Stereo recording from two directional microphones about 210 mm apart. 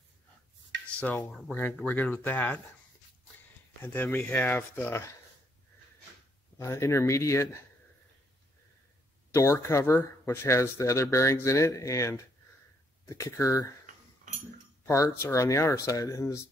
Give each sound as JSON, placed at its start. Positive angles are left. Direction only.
{"t": 0.8, "sound": "speech", "side_deg": 5}
{"t": 3.8, "sound": "speech", "side_deg": 10}
{"t": 6.6, "sound": "speech", "side_deg": 15}
{"t": 9.3, "sound": "speech", "side_deg": 15}
{"t": 14.9, "sound": "speech", "side_deg": 15}